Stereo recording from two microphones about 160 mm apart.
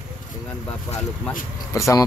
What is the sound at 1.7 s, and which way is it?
Speech, 20° left (ahead or behind).